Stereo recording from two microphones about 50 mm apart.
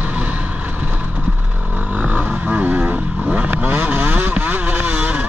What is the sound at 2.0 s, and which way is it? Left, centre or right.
Vehicle, right.